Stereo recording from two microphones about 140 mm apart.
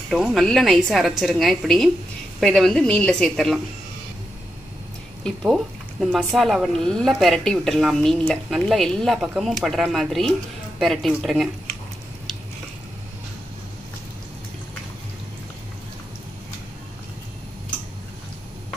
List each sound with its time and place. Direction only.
0.1 s a woman's voice: centre (ahead or behind)
5.2 s a woman's voice: centre (ahead or behind)